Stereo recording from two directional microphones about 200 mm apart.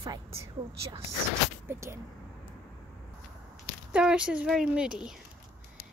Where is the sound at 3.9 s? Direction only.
5° right (ahead or behind).